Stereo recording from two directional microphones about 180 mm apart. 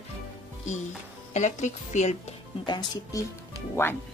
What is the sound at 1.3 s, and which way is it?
Speech, 40° left (ahead or behind).